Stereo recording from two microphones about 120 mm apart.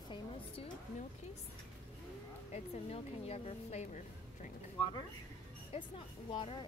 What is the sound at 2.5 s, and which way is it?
A woman's voice, 60° left (ahead or behind).